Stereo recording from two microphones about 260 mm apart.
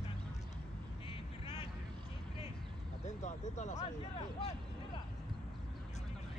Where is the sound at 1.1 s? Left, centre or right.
Centre.